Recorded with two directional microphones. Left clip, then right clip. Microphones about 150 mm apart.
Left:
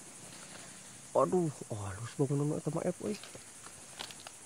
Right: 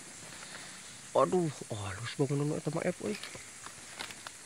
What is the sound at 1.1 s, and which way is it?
Speech, 5° right (ahead or behind).